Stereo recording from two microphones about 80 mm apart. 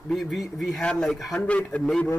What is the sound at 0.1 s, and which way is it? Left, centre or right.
A man's voice, centre.